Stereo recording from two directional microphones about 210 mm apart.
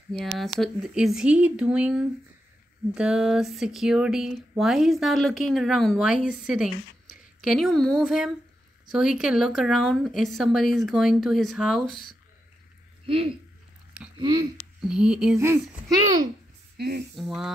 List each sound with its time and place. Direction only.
0.4 s speech: centre (ahead or behind)
13.0 s speech: 25° right (ahead or behind)
14.8 s speech: 5° right (ahead or behind)
16.7 s speech: 50° right (ahead or behind)
17.1 s speech: centre (ahead or behind)